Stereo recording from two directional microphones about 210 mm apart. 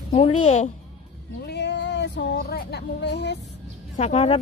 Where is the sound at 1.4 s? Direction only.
55° left (ahead or behind).